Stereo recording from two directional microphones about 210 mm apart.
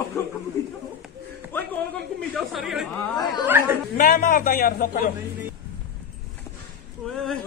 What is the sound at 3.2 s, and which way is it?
Speech, 20° left (ahead or behind).